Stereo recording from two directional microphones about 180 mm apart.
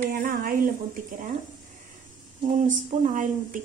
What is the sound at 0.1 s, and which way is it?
Speech, 50° right (ahead or behind).